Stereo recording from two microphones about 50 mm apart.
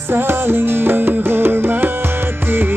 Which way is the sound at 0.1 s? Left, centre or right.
Right.